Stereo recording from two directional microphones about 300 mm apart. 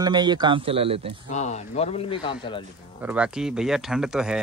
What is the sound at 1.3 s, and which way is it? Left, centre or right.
Speech, left.